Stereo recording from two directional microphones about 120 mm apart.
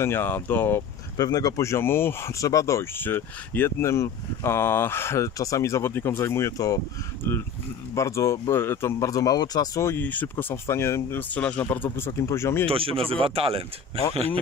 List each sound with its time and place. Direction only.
0.0 s speech: 20° left (ahead or behind)
1.1 s speech: 30° left (ahead or behind); by 12.1 s 15° left (ahead or behind)
12.1 s speech: 25° left (ahead or behind)
12.6 s speech: 50° right (ahead or behind)